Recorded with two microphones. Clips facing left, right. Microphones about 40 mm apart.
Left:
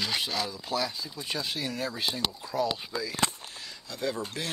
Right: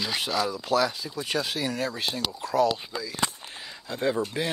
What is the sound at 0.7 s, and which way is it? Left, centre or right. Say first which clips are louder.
Speech: right 8 dB; right.